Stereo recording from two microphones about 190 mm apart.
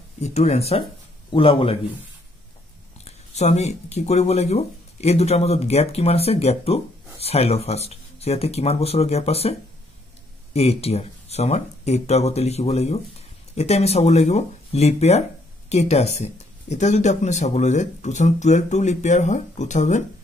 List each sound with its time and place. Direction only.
0.2 s a man's voice: 35° left (ahead or behind)
3.1 s speech: 35° left (ahead or behind)